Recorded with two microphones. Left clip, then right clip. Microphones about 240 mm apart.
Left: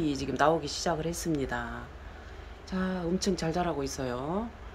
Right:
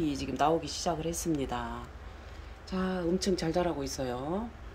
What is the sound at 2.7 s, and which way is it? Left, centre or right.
Speech, centre.